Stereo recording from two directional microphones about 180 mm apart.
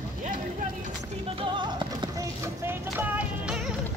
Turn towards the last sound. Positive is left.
turn(degrees=-5)  # may be behind; listen again after turning